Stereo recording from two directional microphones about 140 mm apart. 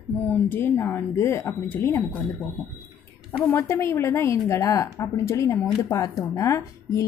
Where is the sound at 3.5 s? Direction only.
20° left (ahead or behind).